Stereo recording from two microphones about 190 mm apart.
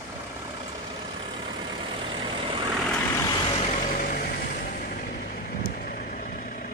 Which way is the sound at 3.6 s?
40° left (ahead or behind).